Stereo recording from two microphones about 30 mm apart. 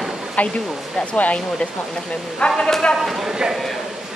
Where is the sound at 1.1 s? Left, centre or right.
Left.